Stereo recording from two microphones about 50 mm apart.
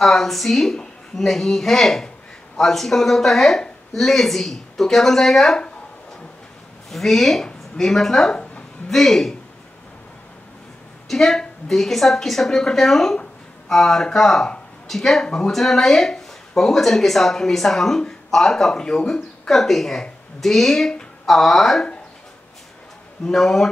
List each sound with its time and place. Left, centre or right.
0.0 s speech: centre
6.9 s speech: centre
11.1 s speech: centre
23.2 s speech: centre